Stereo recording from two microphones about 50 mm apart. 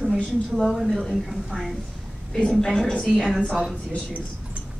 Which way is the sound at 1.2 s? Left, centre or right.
Centre.